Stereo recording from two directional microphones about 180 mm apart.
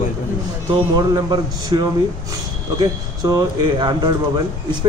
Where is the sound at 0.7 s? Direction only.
20° right (ahead or behind).